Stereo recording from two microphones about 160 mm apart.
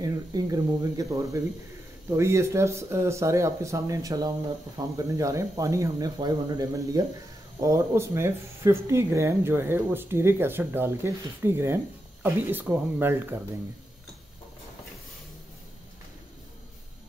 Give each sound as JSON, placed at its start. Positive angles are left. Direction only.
{"t": 0.0, "sound": "speech", "side_deg": -25}